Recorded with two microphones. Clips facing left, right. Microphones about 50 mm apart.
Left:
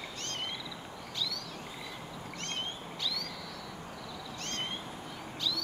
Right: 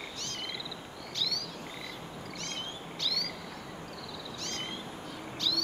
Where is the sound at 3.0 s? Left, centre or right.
Centre.